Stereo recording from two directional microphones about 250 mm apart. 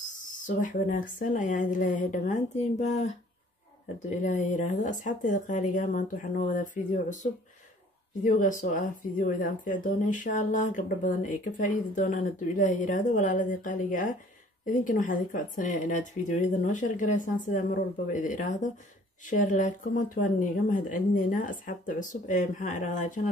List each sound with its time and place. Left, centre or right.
0.1 s speech: left
4.2 s speech: left
8.2 s speech: left